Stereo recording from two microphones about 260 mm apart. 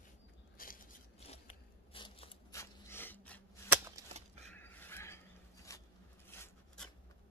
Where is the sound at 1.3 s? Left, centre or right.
Left.